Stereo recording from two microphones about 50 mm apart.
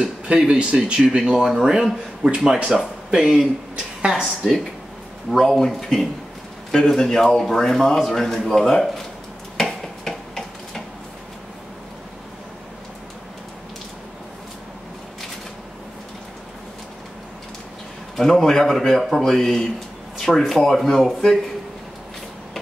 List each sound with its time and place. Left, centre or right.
0.6 s speech: right; by 2.9 s centre
3.1 s speech: centre
3.7 s a sound: centre
4.2 s a man's voice: centre
9.6 s a sound: centre
18.1 s a man's voice: centre